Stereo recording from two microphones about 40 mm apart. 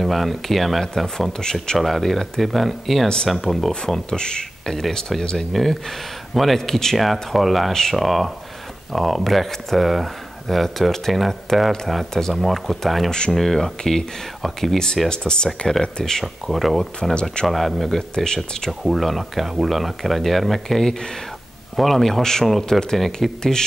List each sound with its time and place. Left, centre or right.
0.0 s speech: centre
1.8 s speech: centre
3.8 s speech: centre
5.5 s speech: centre
12.1 s speech: centre
12.4 s speech: centre
15.0 s speech: centre
16.4 s speech: centre
17.1 s speech: left
17.5 s speech: centre
18.1 s speech: centre
18.7 s speech: centre
23.2 s speech: centre